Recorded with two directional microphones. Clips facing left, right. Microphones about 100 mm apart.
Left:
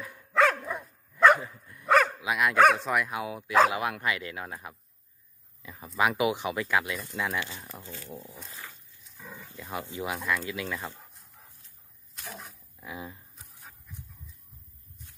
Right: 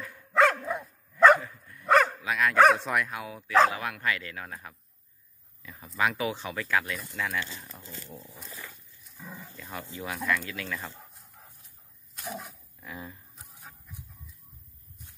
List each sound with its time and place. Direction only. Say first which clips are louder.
0.4 s dog: right 1 dB; 15° right (ahead or behind)
1.4 s dog: left 2 dB; 15° left (ahead or behind)
1.9 s dog: right 1 dB; centre (ahead or behind)
2.2 s speech: even; 15° left (ahead or behind)
2.6 s speech: right 1 dB; centre (ahead or behind)
3.1 s speech: even; 20° left (ahead or behind)
5.9 s speech: left 3 dB; 15° left (ahead or behind)
9.2 s livestock: right 1 dB; 5° right (ahead or behind)
9.6 s speech: left 5 dB; 20° left (ahead or behind)
12.2 s dog: right 5 dB; 15° right (ahead or behind)
12.8 s speech: left 2 dB; 10° left (ahead or behind)
13.5 s a sound: right 2 dB; 15° right (ahead or behind)